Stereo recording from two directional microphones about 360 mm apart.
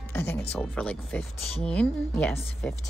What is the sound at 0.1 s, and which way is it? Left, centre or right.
Speech, centre.